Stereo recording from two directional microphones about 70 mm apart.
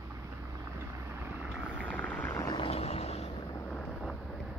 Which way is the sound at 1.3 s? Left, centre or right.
Centre.